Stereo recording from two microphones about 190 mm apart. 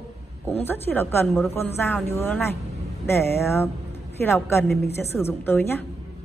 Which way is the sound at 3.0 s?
15° left (ahead or behind).